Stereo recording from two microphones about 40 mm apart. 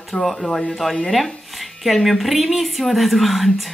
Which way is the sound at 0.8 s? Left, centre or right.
Centre.